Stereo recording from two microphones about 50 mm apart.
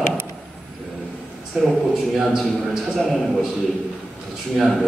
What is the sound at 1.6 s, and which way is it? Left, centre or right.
Speech, centre.